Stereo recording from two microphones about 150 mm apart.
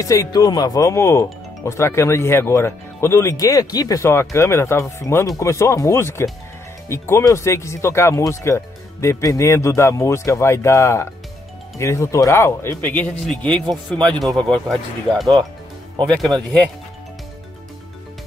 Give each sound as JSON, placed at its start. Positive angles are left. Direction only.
{"t": 0.0, "sound": "speech", "side_deg": 25}